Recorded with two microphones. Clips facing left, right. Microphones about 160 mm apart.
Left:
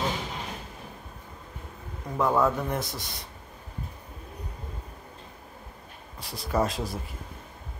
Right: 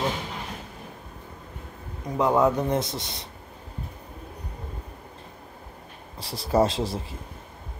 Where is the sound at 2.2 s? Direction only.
20° right (ahead or behind).